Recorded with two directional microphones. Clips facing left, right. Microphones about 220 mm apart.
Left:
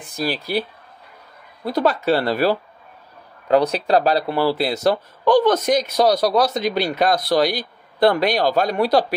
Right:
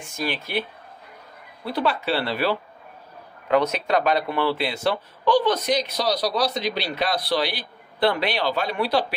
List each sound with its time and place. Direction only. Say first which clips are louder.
0.0 s speech: left 4 dB; 35° left (ahead or behind)